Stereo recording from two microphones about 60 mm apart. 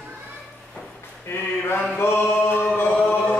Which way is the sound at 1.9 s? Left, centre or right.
Left.